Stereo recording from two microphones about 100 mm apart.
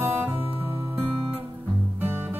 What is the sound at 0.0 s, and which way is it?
Music, 20° right (ahead or behind).